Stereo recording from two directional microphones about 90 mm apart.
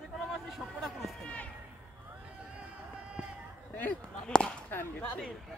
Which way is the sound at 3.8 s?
15° left (ahead or behind).